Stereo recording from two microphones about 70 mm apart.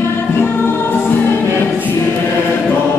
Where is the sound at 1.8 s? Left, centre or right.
Left.